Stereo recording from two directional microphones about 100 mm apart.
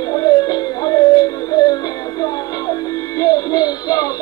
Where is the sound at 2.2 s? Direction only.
35° left (ahead or behind).